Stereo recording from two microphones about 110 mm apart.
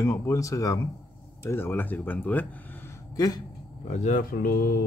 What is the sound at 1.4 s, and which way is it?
Speech, 20° left (ahead or behind).